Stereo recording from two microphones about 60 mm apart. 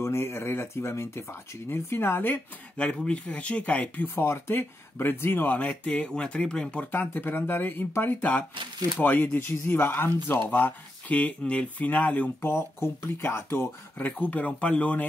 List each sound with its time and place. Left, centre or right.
0.0 s speech: left
3.1 s speech: left
4.0 s speech: left
5.6 s speech: left
6.9 s speech: left
12.4 s speech: left
13.9 s speech: left